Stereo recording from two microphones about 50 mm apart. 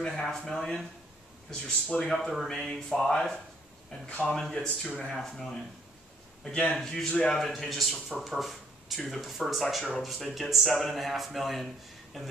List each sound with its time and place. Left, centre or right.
0.0 s a man's voice: centre
1.5 s speech: left
2.0 s a man's voice: centre
4.3 s a man's voice: centre
6.4 s a man's voice: centre